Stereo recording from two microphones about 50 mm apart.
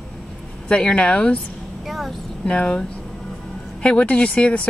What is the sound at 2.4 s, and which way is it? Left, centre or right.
A woman's voice, left.